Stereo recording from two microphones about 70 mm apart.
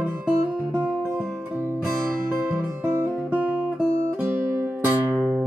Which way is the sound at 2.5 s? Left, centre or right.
Right.